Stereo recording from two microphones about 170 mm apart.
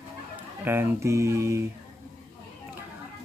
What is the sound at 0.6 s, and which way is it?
Music, 10° right (ahead or behind).